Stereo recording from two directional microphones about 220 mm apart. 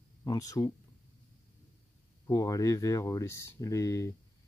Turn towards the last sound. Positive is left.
turn(degrees=15)  # may be behind; listen again after turning